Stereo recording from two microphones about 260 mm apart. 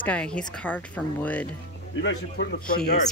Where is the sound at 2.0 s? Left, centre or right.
Left.